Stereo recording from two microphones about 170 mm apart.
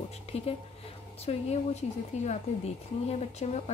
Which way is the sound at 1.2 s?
40° left (ahead or behind).